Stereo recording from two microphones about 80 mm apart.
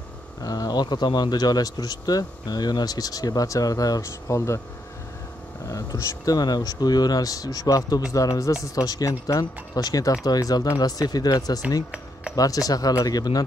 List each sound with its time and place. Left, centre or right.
0.4 s speech: left
5.7 s speech: left